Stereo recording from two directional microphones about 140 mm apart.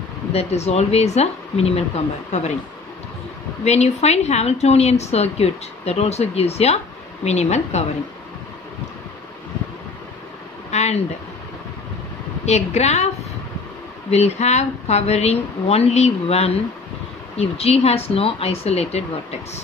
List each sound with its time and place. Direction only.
0.3 s a woman's voice: 50° left (ahead or behind)
3.6 s a woman's voice: 50° left (ahead or behind)
10.7 s a sound: 50° left (ahead or behind)
12.4 s a woman's voice: 50° left (ahead or behind)
14.1 s a woman's voice: 50° left (ahead or behind)